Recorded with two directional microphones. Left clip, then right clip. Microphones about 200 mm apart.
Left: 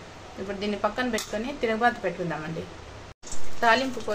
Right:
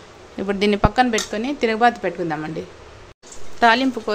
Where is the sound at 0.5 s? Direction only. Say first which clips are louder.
Right 9 dB; 60° right (ahead or behind).